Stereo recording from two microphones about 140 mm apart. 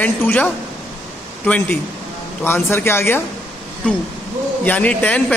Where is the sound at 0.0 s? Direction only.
10° left (ahead or behind).